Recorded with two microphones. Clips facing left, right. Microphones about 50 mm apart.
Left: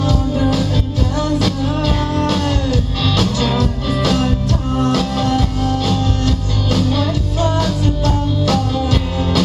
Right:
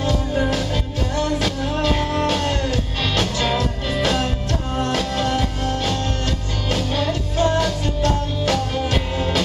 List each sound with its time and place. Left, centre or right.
0.0 s music: right